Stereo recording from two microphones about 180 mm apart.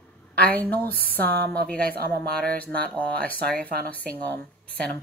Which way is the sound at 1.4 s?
5° left (ahead or behind).